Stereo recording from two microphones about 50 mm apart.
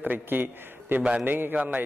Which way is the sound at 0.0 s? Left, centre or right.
Right.